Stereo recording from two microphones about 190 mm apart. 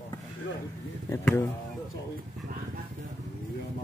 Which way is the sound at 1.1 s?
15° left (ahead or behind).